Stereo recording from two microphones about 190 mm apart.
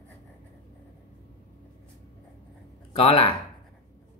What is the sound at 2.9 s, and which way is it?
Speech, 30° left (ahead or behind).